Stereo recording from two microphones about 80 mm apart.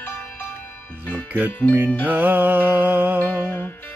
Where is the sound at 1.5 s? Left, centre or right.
Centre.